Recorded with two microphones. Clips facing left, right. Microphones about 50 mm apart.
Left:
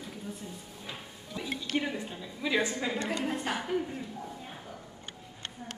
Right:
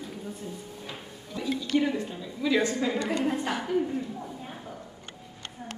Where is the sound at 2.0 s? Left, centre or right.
Centre.